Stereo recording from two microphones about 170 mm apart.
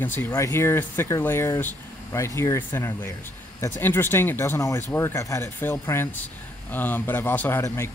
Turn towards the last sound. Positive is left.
turn(degrees=15)  # may be behind; listen again after turning